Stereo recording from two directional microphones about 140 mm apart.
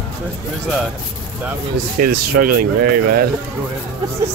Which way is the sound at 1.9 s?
90° right.